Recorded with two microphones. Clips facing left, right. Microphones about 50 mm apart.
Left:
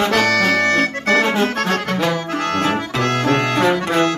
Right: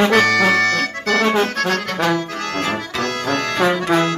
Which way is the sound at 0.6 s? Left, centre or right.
Left.